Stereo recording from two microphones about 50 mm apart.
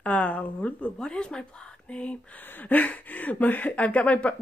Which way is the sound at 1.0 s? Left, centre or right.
Centre.